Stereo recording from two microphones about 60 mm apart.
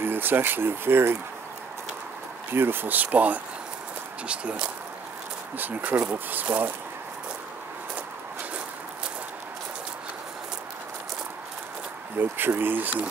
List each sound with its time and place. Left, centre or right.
0.0 s speech: right
2.5 s speech: right; by 4.6 s centre
5.6 s speech: right
12.2 s speech: right